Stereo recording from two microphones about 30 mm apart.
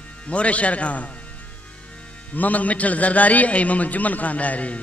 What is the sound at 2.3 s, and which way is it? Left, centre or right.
A man's voice, left.